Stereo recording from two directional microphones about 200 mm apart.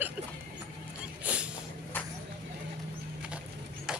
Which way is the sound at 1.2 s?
5° right (ahead or behind).